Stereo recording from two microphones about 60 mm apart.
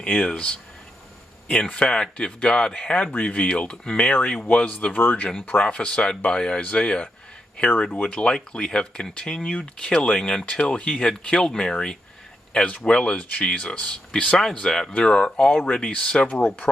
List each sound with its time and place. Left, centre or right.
0.0 s speech: centre
16.6 s speech: centre